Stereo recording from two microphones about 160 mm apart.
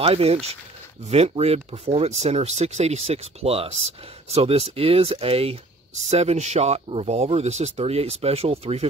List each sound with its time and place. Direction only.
0.0 s speech: 35° right (ahead or behind)